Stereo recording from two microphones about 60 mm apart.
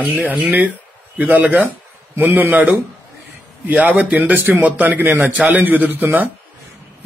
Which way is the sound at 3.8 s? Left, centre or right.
Right.